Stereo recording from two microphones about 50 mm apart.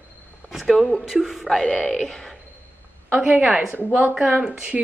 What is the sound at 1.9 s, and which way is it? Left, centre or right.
Speech, centre.